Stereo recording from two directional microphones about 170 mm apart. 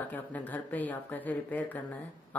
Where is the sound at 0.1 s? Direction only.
10° left (ahead or behind).